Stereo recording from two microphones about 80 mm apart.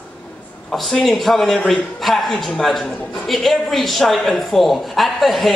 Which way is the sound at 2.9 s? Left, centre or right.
Centre.